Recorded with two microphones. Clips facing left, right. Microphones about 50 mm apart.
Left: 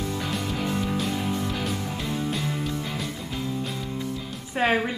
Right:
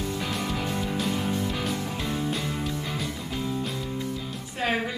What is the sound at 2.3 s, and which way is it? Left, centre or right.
Music, centre.